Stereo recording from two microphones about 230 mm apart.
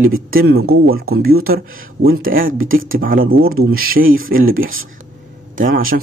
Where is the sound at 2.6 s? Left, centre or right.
Right.